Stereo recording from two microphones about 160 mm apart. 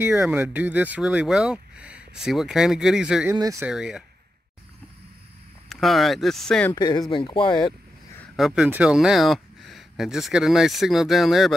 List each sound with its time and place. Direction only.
0.0 s speech: 10° right (ahead or behind)
3.3 s speech: 20° right (ahead or behind)
3.6 s speech: 5° right (ahead or behind)
5.7 s speech: centre (ahead or behind)
6.7 s speech: 25° left (ahead or behind)
8.4 s speech: 5° right (ahead or behind)